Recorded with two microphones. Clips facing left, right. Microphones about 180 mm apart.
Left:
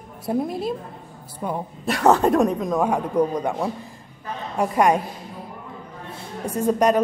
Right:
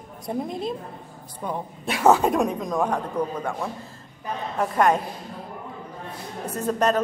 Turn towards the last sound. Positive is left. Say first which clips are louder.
# left 4 dB
turn(degrees=10)  # may be behind; listen again after turning